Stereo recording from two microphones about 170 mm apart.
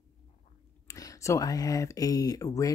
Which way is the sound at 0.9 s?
20° left (ahead or behind).